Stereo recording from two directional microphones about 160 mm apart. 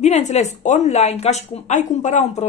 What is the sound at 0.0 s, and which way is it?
Speech, 45° left (ahead or behind).